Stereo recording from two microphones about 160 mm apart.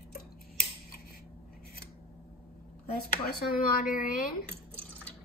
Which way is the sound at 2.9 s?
75° left (ahead or behind).